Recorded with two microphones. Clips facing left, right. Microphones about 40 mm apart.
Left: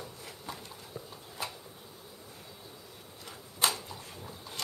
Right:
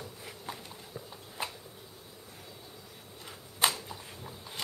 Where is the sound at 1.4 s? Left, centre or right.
Right.